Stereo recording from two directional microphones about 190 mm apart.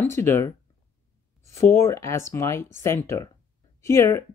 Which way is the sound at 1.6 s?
15° left (ahead or behind).